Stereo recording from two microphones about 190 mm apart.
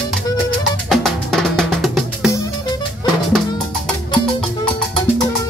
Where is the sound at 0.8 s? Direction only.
Centre (ahead or behind).